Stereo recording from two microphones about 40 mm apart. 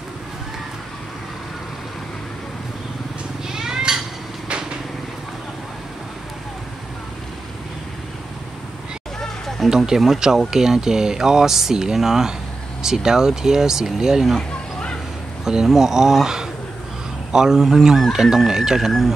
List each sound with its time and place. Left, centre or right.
3.4 s cat: centre
9.7 s speech: centre
15.4 s speech: centre
18.9 s speech: centre